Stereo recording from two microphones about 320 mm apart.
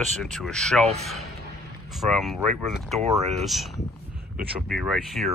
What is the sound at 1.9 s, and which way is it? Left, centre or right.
Speech, centre.